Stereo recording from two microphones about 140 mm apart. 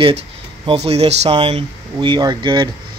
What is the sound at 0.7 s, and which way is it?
Speech, 50° right (ahead or behind).